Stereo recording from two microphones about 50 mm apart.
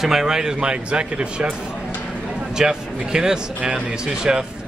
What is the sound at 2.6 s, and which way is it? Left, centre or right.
Speech, centre.